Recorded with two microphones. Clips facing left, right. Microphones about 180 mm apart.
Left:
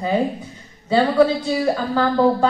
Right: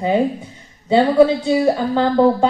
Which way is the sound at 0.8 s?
20° right (ahead or behind).